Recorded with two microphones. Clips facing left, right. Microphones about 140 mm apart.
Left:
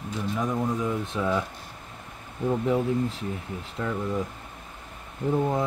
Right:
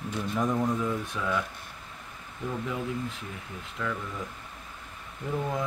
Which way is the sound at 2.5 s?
35° left (ahead or behind).